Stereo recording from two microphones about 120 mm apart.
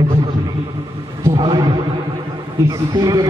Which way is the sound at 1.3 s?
35° right (ahead or behind).